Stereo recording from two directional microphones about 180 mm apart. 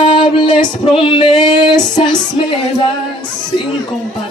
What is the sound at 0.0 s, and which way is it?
Music, 30° left (ahead or behind).